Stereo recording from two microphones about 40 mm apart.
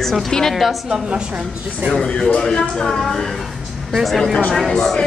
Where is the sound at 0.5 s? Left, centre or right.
Centre.